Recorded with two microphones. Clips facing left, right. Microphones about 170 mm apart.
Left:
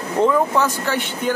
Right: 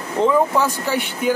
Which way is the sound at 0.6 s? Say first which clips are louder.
Even; 10° right (ahead or behind).